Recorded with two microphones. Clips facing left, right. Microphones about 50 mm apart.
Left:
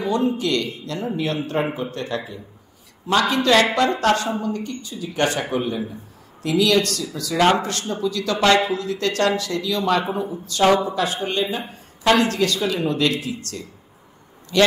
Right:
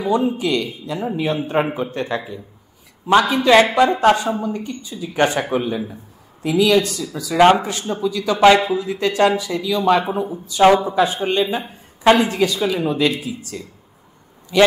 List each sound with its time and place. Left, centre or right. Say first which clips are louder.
0.0 s speech: right 2 dB; centre
5.7 s speech: right 2 dB; centre